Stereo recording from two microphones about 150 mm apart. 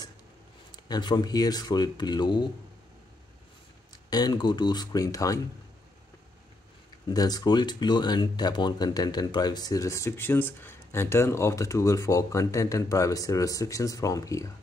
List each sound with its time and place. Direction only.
0.7 s speech: 30° left (ahead or behind)
4.1 s speech: 25° left (ahead or behind)
7.1 s speech: 25° left (ahead or behind)